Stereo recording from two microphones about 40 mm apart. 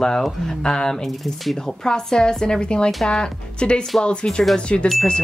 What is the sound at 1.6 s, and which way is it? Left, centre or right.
Speech, centre.